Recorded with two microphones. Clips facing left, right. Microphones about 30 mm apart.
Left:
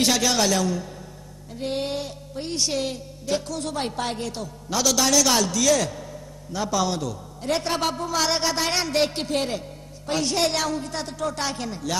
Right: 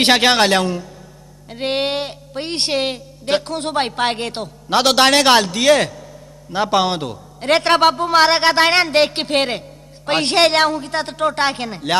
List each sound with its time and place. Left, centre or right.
0.0 s a man's voice: right